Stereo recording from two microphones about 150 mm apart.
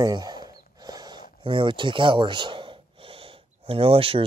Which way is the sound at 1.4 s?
35° right (ahead or behind).